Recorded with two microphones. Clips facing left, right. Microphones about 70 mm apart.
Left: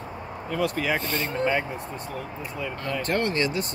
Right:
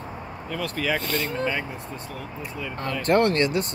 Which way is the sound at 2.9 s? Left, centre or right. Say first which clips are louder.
Right 6 dB; right.